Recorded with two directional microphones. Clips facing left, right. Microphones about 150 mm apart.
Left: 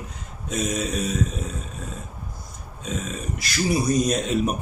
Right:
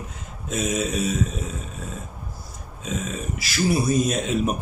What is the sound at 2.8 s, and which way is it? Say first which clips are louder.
Speech: right 1 dB; centre (ahead or behind).